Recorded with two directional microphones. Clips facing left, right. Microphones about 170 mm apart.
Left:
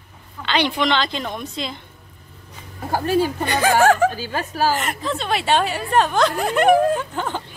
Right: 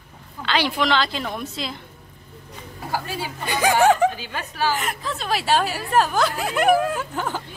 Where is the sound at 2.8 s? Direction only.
50° left (ahead or behind).